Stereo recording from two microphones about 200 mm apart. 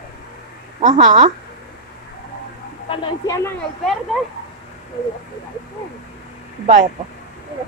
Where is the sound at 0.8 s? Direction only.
35° right (ahead or behind).